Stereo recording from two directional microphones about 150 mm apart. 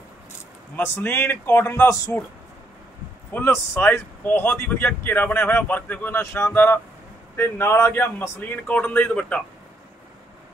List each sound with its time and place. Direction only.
0.7 s speech: 15° left (ahead or behind)
3.3 s speech: 15° left (ahead or behind)